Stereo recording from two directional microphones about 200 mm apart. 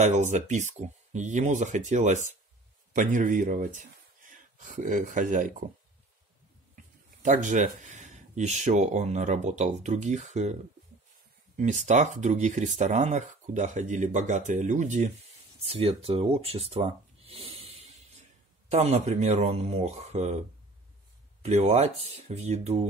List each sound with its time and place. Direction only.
0.0 s speech: 35° right (ahead or behind)
7.2 s speech: 40° right (ahead or behind)